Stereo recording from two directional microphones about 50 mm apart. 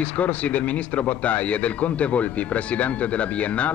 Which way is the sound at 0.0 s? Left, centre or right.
Left.